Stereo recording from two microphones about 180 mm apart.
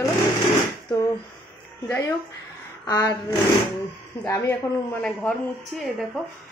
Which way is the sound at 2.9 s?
20° left (ahead or behind).